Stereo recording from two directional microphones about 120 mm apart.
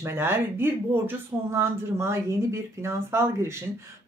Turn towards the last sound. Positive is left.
turn(degrees=-20)  # may be behind; listen again after turning